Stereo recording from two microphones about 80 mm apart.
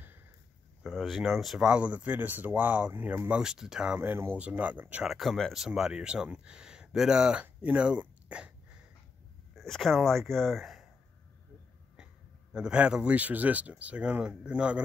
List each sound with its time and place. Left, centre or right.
0.8 s speech: centre
1.7 s speech: centre
4.0 s speech: right
5.0 s speech: centre
7.4 s a sound: centre
9.6 s speech: centre
12.5 s speech: centre